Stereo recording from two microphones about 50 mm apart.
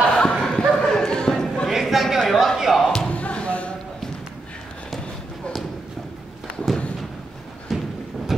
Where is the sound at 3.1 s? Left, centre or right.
Left.